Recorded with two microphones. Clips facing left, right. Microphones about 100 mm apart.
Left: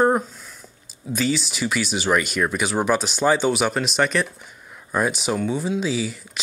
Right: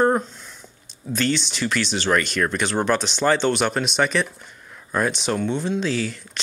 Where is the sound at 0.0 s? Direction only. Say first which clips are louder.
Even; 5° left (ahead or behind).